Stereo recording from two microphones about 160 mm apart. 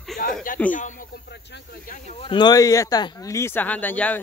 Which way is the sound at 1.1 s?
85° left.